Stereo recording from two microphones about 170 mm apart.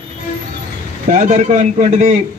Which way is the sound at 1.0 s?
45° right (ahead or behind).